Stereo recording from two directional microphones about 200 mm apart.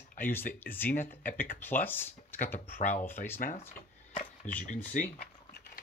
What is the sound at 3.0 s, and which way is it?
Speech, 10° left (ahead or behind).